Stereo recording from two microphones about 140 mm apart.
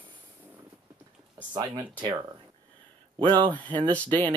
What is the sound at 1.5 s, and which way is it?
Speech, 35° right (ahead or behind).